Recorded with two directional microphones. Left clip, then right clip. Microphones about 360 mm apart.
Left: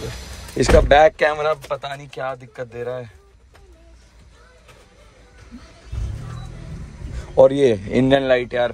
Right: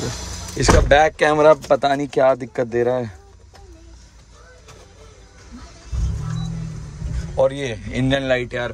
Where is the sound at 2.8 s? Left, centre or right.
Right.